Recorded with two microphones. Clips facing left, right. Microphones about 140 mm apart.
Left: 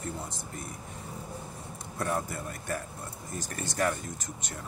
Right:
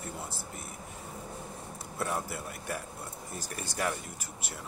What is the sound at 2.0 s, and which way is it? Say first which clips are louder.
Speech: left 2 dB; 5° right (ahead or behind).